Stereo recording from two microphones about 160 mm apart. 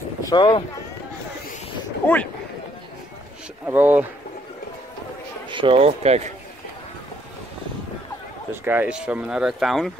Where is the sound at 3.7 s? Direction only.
10° right (ahead or behind).